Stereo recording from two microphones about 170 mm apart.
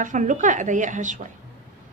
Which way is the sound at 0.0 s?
50° right (ahead or behind).